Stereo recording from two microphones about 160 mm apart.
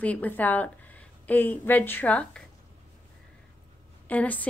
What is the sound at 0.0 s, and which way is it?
A woman's voice, 10° left (ahead or behind).